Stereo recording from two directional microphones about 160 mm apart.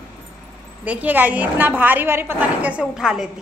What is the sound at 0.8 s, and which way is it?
A woman's voice, 10° right (ahead or behind).